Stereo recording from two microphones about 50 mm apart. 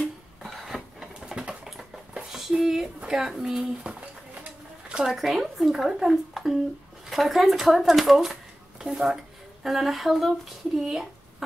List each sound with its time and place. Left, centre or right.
0.4 s a sound: centre
2.1 s dishes: centre
3.2 s speech: centre
3.9 s speech: right
5.0 s speech: centre
10.8 s a sound: centre